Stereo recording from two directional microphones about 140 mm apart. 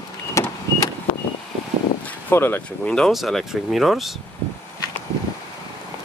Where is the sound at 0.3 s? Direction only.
20° left (ahead or behind).